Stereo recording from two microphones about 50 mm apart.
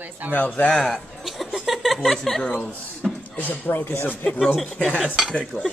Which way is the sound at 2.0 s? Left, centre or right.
Centre.